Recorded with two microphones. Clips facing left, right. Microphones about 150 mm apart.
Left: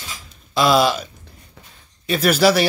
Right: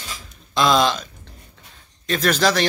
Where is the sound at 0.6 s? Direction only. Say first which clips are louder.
Left 2 dB; 5° left (ahead or behind).